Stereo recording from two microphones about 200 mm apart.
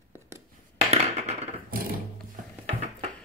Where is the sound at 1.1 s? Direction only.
30° right (ahead or behind).